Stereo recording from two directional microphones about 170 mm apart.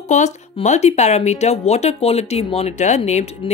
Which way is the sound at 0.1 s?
45° left (ahead or behind).